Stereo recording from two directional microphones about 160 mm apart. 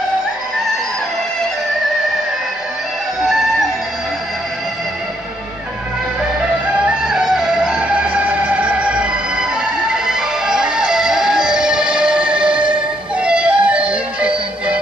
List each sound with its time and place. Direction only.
6.9 s music: 5° right (ahead or behind)
12.4 s music: 30° right (ahead or behind)
13.2 s music: 5° right (ahead or behind)